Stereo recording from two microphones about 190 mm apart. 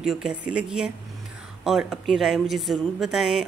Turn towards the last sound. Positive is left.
turn(degrees=0)  # may be behind; listen again after turning